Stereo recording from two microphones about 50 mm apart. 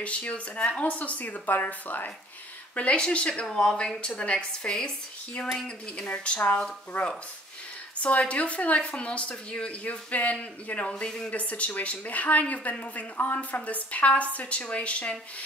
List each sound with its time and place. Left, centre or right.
0.0 s a woman's voice: left
6.0 s speech: left